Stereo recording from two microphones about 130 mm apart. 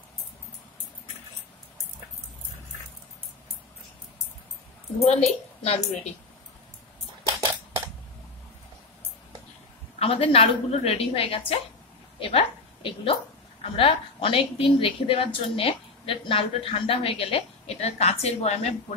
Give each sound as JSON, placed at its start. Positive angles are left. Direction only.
{"t": 5.0, "sound": "a woman's voice", "side_deg": 55}
{"t": 9.9, "sound": "a woman's voice", "side_deg": 50}